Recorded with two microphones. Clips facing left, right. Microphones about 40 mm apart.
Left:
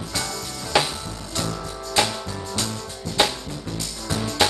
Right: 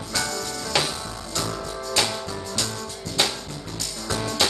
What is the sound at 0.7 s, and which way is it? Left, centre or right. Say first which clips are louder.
Music: left 4 dB; centre.